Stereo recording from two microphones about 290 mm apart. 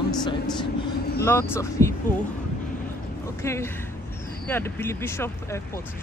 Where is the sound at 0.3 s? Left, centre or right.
Centre.